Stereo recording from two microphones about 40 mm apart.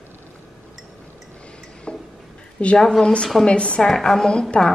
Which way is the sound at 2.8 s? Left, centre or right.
Centre.